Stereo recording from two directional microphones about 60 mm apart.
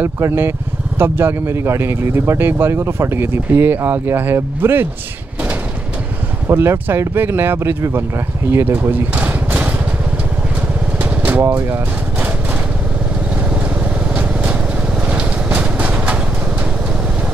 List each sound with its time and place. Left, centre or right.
0.3 s speech: right
6.4 s speech: right
9.1 s a sound: right
11.0 s vehicle: right
11.4 s speech: right
15.0 s vehicle: right